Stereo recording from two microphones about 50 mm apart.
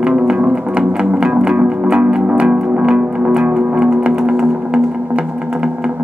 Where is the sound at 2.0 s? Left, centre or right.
Right.